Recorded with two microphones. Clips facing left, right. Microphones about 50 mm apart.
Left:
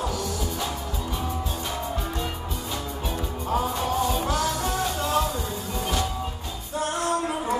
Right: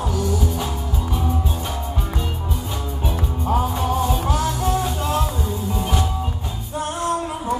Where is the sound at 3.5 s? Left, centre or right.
Centre.